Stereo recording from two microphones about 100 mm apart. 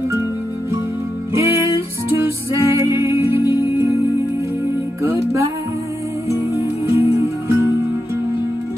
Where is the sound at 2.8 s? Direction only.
30° right (ahead or behind).